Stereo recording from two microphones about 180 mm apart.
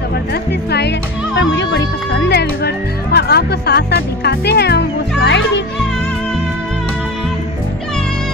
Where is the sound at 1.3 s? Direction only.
80° left.